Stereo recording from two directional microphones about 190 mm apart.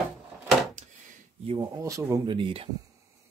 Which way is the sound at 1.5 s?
20° right (ahead or behind).